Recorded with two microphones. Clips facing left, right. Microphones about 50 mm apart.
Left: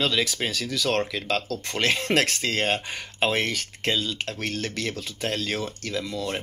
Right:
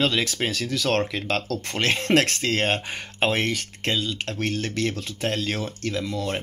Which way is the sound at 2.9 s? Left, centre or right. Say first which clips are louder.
Right 1 dB; right.